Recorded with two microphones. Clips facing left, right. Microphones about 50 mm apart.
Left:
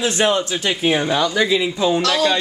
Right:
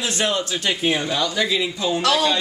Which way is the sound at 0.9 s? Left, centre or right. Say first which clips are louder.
Left 4 dB; left.